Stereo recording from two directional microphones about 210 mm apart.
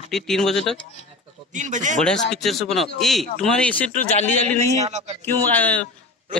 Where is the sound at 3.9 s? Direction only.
35° left (ahead or behind).